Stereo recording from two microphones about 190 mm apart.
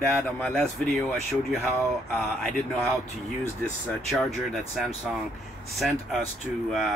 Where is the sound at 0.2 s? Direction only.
10° left (ahead or behind).